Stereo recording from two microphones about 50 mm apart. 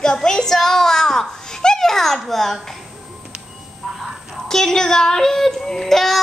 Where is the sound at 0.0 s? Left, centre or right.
Centre.